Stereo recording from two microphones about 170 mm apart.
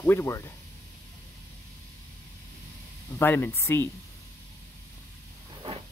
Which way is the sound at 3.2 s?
15° left (ahead or behind).